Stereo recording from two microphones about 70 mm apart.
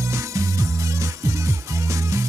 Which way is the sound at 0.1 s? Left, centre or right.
Right.